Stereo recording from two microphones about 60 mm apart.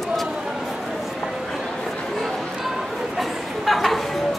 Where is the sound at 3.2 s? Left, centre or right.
Centre.